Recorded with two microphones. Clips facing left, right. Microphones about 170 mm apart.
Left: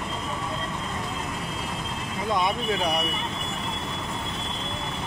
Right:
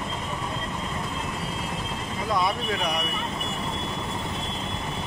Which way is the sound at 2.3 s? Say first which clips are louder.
Left 1 dB; 25° left (ahead or behind).